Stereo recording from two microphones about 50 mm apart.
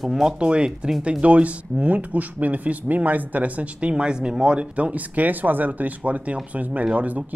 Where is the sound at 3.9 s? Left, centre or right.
Centre.